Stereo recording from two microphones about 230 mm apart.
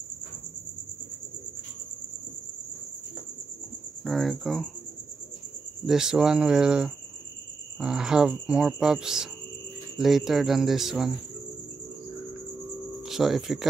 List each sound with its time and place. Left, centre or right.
4.0 s speech: centre
5.9 s speech: centre
13.0 s speech: centre